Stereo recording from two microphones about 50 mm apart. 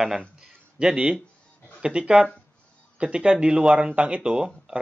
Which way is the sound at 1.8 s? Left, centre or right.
Centre.